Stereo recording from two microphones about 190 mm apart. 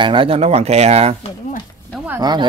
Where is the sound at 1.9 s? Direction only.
5° right (ahead or behind).